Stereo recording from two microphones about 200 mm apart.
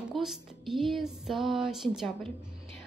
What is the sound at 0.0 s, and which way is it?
Speech, centre (ahead or behind).